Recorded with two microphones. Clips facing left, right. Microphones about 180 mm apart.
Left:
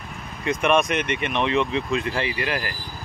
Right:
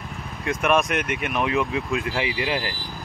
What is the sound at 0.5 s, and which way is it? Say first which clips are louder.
Speech: left 1 dB; centre (ahead or behind).